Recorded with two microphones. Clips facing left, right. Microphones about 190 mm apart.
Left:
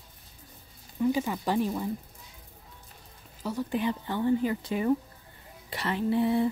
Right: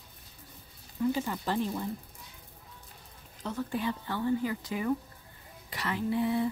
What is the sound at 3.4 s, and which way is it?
Speech, 10° left (ahead or behind).